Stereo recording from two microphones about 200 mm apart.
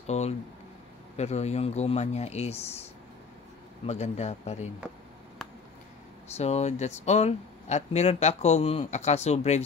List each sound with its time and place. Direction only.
0.0 s a sound: 35° left (ahead or behind)
1.1 s speech: 35° left (ahead or behind)
6.2 s speech: 30° left (ahead or behind)